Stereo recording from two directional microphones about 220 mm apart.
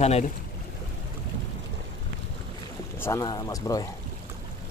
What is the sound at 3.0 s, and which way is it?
Speech, 15° left (ahead or behind).